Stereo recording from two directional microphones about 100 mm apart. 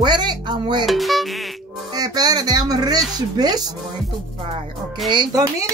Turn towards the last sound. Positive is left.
turn(degrees=-50)  # may be behind; listen again after turning